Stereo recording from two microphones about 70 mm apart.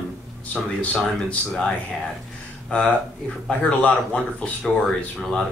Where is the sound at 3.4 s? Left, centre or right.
Centre.